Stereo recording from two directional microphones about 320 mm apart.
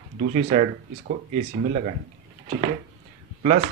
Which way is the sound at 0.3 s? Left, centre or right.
Right.